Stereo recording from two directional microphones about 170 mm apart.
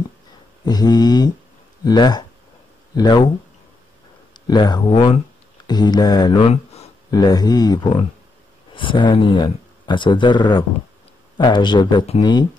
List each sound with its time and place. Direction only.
0.7 s speech: 25° left (ahead or behind)
4.5 s speech: 25° left (ahead or behind)
7.1 s speech: 25° left (ahead or behind)